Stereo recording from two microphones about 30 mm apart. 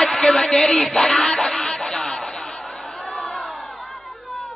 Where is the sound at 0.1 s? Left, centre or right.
Centre.